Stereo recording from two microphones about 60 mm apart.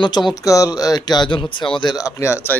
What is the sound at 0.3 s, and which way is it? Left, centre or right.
Speech, left.